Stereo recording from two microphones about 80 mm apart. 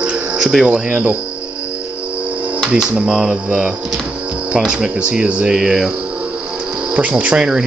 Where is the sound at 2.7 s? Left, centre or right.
Centre.